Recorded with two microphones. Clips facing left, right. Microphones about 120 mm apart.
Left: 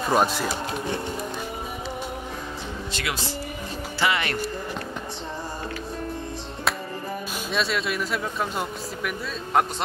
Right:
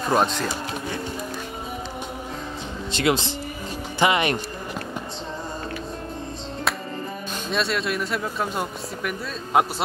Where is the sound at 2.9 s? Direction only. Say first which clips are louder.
Right 10 dB; 25° right (ahead or behind).